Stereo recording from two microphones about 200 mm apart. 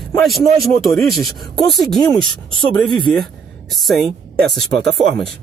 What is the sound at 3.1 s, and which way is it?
Speech, centre (ahead or behind).